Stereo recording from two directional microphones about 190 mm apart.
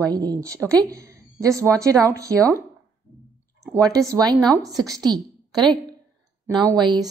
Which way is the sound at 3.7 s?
15° right (ahead or behind).